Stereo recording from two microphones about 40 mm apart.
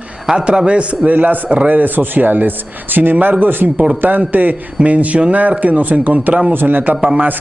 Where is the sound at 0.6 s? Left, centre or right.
Right.